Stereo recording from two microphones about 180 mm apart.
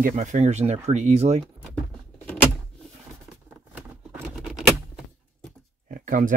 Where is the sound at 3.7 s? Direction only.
5° right (ahead or behind).